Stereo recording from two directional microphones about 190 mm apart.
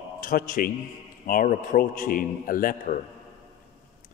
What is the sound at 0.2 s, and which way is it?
A man's voice, 45° left (ahead or behind).